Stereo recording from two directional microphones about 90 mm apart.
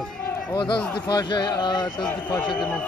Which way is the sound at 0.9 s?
50° left (ahead or behind).